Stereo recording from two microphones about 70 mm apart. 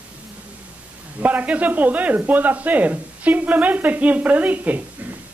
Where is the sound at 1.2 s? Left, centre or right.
Right.